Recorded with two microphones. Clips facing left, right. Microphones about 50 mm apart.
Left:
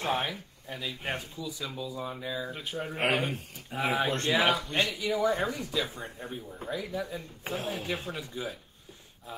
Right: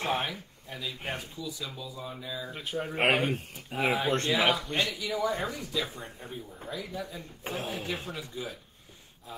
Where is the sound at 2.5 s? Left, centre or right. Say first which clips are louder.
Right 2 dB; centre.